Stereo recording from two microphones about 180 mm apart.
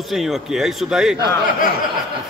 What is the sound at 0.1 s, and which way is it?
A man's voice, centre (ahead or behind).